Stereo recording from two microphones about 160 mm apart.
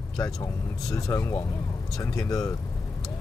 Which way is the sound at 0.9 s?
20° left (ahead or behind).